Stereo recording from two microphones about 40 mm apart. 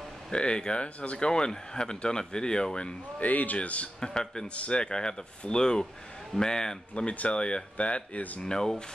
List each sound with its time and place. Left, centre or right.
0.3 s speech: left
3.2 s speech: left
4.0 s speech: centre
4.6 s speech: left
7.1 s speech: left
8.4 s speech: centre